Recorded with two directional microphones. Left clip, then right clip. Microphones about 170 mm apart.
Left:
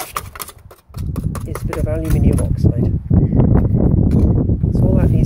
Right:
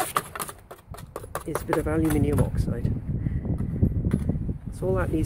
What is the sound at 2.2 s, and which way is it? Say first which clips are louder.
Speech: left 6 dB; 15° right (ahead or behind).